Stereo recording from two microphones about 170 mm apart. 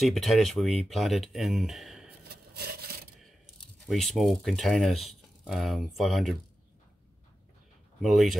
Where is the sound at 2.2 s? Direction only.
70° right (ahead or behind).